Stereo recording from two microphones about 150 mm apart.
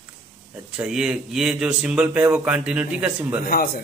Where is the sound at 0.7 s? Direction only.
5° right (ahead or behind).